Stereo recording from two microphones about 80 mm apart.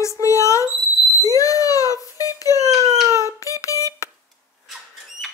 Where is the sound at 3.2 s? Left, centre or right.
Left.